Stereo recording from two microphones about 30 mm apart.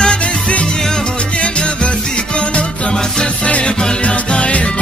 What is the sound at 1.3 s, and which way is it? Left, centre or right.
Music, left.